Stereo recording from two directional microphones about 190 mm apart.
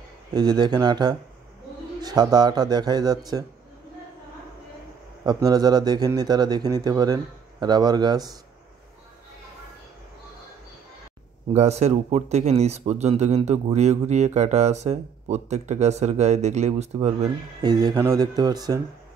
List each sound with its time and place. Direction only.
0.3 s speech: 20° right (ahead or behind)
5.2 s speech: 20° right (ahead or behind)
11.5 s speech: 35° right (ahead or behind)
17.6 s speech: 20° right (ahead or behind)